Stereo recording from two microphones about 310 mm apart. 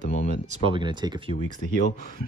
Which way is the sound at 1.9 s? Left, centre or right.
Left.